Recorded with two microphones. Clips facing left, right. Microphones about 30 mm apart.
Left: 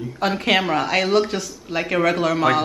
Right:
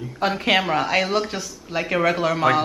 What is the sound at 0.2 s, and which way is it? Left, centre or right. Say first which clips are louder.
Speech: left 1 dB; centre.